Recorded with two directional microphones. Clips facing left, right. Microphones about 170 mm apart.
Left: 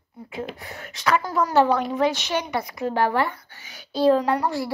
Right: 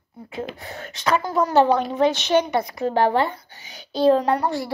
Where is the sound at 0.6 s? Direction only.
25° right (ahead or behind).